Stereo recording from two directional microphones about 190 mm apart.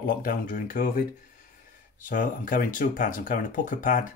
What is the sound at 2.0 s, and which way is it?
Speech, 45° left (ahead or behind).